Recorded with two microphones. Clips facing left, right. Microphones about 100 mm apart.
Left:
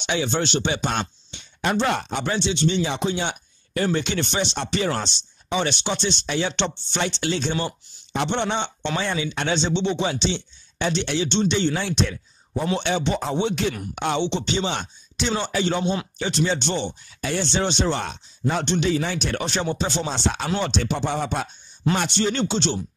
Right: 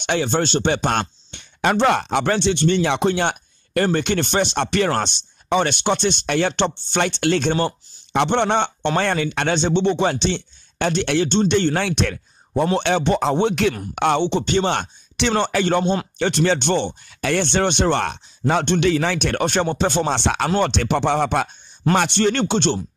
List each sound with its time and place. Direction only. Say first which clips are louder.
0.0 s speech: right 4 dB; 50° right (ahead or behind)